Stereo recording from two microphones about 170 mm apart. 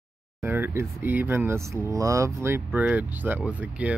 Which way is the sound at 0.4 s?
15° right (ahead or behind).